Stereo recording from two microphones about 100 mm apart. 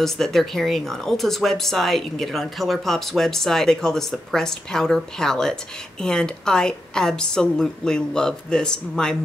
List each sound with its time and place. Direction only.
0.0 s speech: 5° left (ahead or behind)